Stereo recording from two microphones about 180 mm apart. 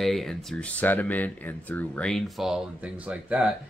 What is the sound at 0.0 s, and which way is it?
Speech, centre (ahead or behind).